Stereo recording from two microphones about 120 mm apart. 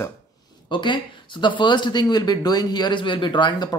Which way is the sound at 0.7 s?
40° left (ahead or behind).